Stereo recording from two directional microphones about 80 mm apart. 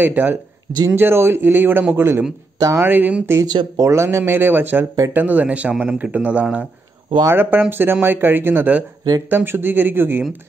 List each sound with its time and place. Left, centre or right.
0.0 s speech: right
3.4 s speech: right
3.8 s a man's voice: right
4.2 s a man's voice: right
7.2 s speech: right